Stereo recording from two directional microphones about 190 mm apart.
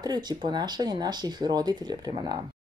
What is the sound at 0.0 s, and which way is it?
Speech, 20° right (ahead or behind).